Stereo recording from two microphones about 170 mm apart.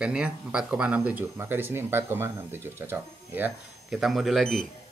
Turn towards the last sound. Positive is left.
turn(degrees=0)  # may be behind; listen again after turning